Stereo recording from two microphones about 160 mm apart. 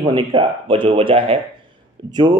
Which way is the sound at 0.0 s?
30° right (ahead or behind).